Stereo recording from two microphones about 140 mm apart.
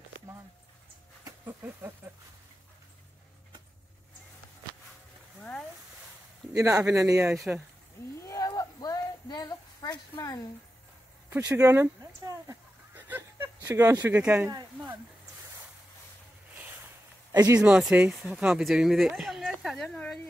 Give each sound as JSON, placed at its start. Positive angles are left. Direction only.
{"t": 1.2, "sound": "a sound", "side_deg": -15}
{"t": 6.5, "sound": "speech", "side_deg": -25}
{"t": 7.3, "sound": "speech", "side_deg": -5}
{"t": 8.2, "sound": "a sound", "side_deg": 20}
{"t": 11.2, "sound": "speech", "side_deg": -15}
{"t": 17.6, "sound": "speech", "side_deg": -5}